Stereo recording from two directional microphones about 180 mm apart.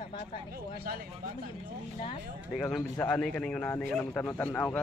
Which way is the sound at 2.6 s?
5° left (ahead or behind).